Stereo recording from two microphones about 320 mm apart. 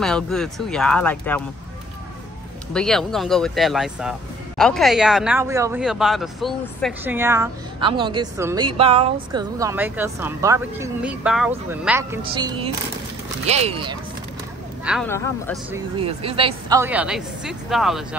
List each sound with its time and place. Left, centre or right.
0.0 s speech: centre
2.7 s speech: centre
14.9 s speech: centre
15.7 s speech: centre